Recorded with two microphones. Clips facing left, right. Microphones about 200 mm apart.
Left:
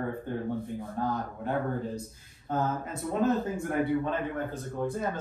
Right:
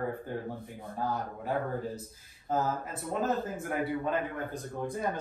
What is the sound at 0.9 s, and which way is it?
A man's voice, 5° right (ahead or behind).